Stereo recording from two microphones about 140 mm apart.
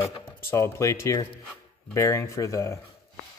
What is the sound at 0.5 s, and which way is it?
Speech, 20° left (ahead or behind).